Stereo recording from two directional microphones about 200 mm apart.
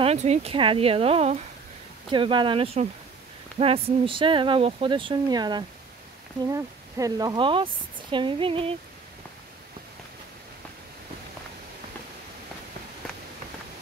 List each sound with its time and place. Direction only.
0.0 s speech: 35° right (ahead or behind)